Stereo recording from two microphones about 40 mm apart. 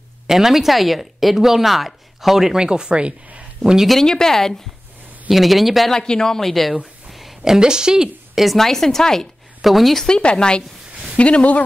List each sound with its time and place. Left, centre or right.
0.3 s speech: centre
2.6 s speech: right
4.0 s a man's voice: centre
5.3 s speech: centre
5.9 s a man's voice: centre
7.1 s a sound: centre
7.5 s speech: centre
8.4 s a man's voice: centre
9.6 s speech: centre
10.0 s speech: left